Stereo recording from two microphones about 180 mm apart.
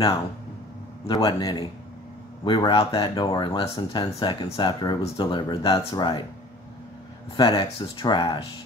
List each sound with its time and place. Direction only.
1.0 s speech: 25° left (ahead or behind)
7.3 s speech: 30° left (ahead or behind)